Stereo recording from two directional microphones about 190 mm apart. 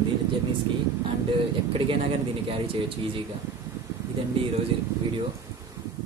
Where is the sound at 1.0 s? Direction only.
30° right (ahead or behind).